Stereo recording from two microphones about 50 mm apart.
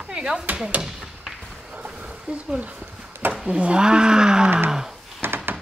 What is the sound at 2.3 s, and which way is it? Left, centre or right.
Speech, right.